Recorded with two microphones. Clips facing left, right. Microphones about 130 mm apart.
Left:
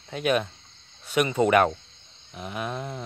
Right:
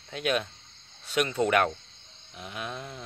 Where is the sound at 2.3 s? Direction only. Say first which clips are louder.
Left 5 dB; 50° left (ahead or behind).